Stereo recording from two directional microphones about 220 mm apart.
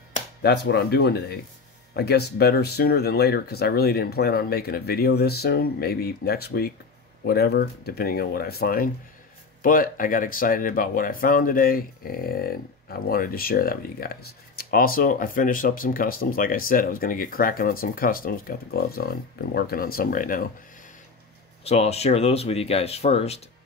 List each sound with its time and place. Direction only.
0.4 s speech: 50° left (ahead or behind)
21.6 s speech: 30° left (ahead or behind)